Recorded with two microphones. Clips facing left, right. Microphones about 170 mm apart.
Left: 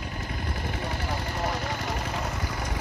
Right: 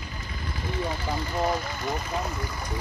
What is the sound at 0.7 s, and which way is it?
Vehicle, 70° left (ahead or behind).